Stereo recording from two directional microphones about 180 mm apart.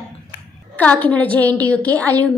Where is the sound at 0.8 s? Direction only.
10° left (ahead or behind).